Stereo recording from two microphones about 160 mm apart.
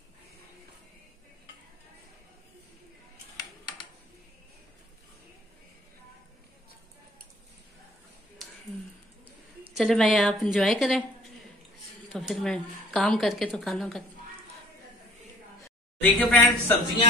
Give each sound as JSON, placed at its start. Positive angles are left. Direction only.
{"t": 3.3, "sound": "a sound", "side_deg": 25}
{"t": 9.8, "sound": "a woman's voice", "side_deg": 0}
{"t": 12.1, "sound": "a woman's voice", "side_deg": 0}
{"t": 16.0, "sound": "a woman's voice", "side_deg": 10}